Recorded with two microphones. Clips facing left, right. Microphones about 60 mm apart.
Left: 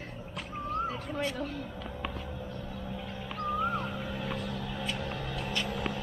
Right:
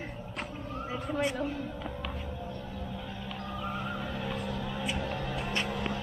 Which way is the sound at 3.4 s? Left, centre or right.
Centre.